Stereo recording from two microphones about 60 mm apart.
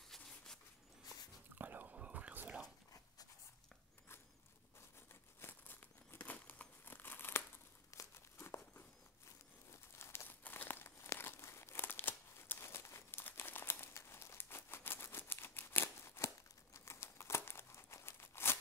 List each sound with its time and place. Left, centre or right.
1.5 s whispering: right
5.4 s crumpling: left
7.9 s crumpling: left
10.2 s crumpling: left
13.2 s crumpling: left